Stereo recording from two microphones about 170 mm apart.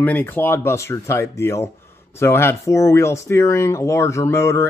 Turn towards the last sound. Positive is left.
turn(degrees=15)  # may be behind; listen again after turning